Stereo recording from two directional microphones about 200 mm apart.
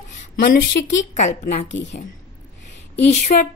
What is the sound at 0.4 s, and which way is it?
Speech, 40° left (ahead or behind).